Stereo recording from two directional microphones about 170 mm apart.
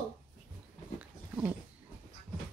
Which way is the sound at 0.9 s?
10° right (ahead or behind).